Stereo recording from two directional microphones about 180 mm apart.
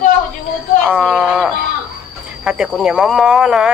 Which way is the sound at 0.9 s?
5° right (ahead or behind).